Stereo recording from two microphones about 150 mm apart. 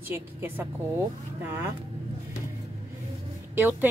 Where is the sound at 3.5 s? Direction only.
10° right (ahead or behind).